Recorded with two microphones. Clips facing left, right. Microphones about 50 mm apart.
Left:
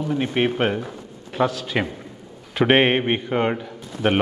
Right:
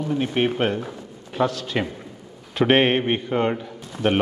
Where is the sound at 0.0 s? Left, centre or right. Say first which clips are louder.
Left 1 dB; centre.